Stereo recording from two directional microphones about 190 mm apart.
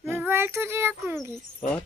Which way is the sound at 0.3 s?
15° right (ahead or behind).